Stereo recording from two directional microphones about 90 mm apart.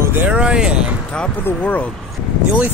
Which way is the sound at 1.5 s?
20° left (ahead or behind).